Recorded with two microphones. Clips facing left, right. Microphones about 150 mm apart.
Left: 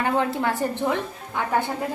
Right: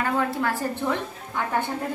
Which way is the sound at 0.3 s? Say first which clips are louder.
Left 2 dB; 20° left (ahead or behind).